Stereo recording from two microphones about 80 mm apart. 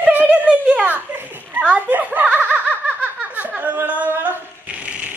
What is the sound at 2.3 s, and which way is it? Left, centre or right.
Snicker, right.